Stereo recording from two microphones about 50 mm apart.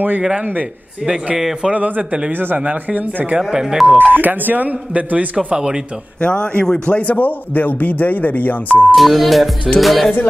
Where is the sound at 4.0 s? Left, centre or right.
Right; by 5.7 s centre.